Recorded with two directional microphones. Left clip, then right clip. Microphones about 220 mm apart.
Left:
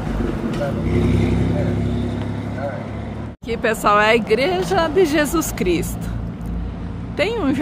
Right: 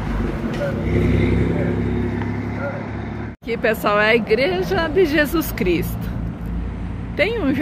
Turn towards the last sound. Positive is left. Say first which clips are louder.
# even
turn(degrees=0)  # may be behind; listen again after turning